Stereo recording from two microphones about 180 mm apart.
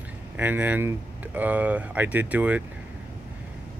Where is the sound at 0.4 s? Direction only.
10° right (ahead or behind).